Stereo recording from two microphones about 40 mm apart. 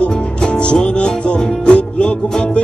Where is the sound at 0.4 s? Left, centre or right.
Left.